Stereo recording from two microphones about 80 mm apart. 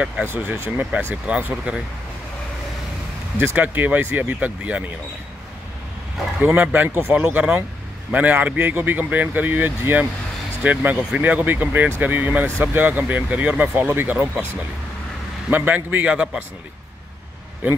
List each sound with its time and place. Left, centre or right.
0.2 s speech: right
3.3 s speech: right
6.4 s speech: centre
15.5 s speech: right